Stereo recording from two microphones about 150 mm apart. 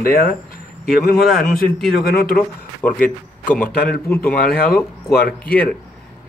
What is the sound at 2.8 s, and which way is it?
Speech, 10° left (ahead or behind).